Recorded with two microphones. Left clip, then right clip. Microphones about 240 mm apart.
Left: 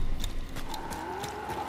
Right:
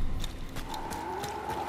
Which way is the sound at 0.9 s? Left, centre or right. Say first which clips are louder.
Right 1 dB; centre.